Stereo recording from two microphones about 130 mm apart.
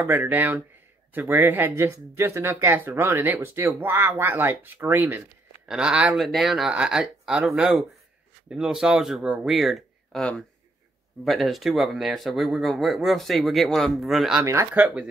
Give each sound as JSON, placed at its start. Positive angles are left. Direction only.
{"t": 0.0, "sound": "speech", "side_deg": -15}
{"t": 14.4, "sound": "speech", "side_deg": -20}
{"t": 14.7, "sound": "speech", "side_deg": -10}